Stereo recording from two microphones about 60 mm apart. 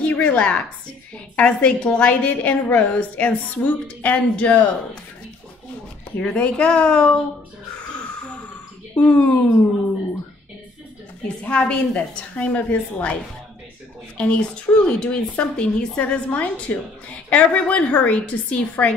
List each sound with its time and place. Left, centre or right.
0.0 s a woman's voice: left
6.1 s a woman's voice: centre
8.9 s a woman's voice: left
11.4 s a woman's voice: centre